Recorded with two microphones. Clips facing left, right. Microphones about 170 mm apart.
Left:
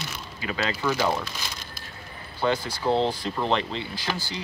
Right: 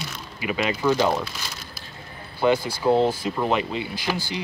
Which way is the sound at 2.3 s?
10° right (ahead or behind).